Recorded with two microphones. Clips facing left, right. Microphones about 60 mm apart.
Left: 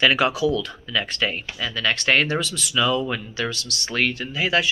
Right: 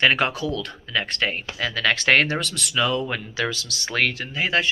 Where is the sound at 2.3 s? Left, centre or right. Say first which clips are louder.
Left 2 dB; right.